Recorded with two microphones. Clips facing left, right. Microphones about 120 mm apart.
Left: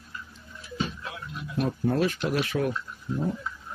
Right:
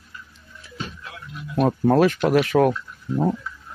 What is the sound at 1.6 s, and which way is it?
Speech, 70° right (ahead or behind).